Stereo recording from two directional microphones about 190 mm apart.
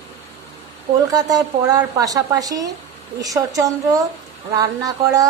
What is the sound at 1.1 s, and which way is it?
Speech, 20° right (ahead or behind).